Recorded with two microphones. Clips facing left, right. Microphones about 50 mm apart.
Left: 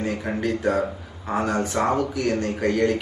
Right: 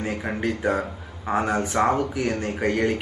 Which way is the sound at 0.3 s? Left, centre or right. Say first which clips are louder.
Left 1 dB; centre.